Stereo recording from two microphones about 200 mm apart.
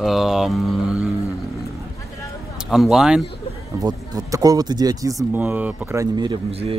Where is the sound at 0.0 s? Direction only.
Centre (ahead or behind).